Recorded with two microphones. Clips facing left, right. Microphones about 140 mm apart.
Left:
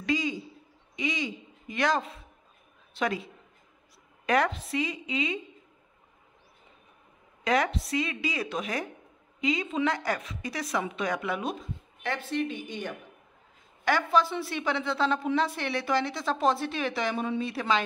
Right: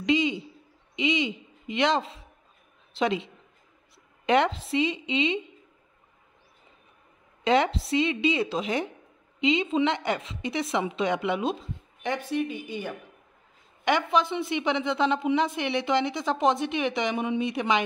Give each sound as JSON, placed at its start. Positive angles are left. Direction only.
{"t": 0.0, "sound": "a sound", "side_deg": -20}
{"t": 0.9, "sound": "a woman's voice", "side_deg": -20}
{"t": 4.3, "sound": "a woman's voice", "side_deg": -25}
{"t": 7.4, "sound": "a woman's voice", "side_deg": -25}
{"t": 12.1, "sound": "a woman's voice", "side_deg": -15}
{"t": 13.8, "sound": "a woman's voice", "side_deg": -20}